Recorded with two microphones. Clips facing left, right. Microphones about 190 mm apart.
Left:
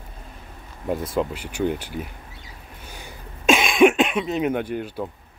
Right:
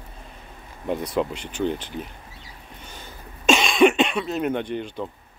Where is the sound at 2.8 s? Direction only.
10° left (ahead or behind).